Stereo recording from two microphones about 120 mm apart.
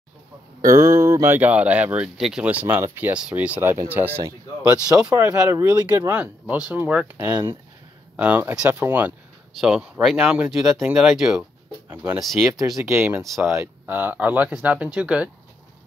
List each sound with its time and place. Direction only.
0.6 s speech: 25° right (ahead or behind)
9.5 s speech: 5° right (ahead or behind)
12.2 s speech: centre (ahead or behind)
12.8 s speech: 15° right (ahead or behind)